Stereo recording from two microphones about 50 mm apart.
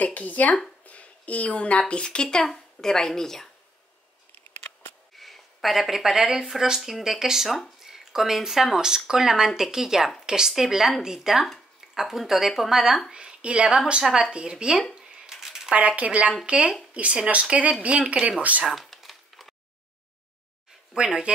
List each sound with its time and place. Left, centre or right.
0.0 s a woman's voice: left; by 3.4 s centre
5.1 s speech: centre
7.4 s speech: centre
7.8 s a woman's voice: centre
13.1 s a woman's voice: centre
15.3 s a sound: centre
16.0 s speech: right
18.7 s crumpling: centre
20.9 s speech: centre